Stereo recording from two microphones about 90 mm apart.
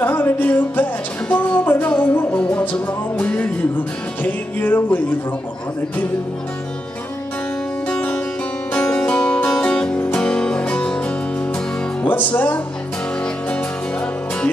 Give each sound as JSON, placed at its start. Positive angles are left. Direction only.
{"t": 0.0, "sound": "music", "side_deg": 25}
{"t": 7.9, "sound": "music", "side_deg": 10}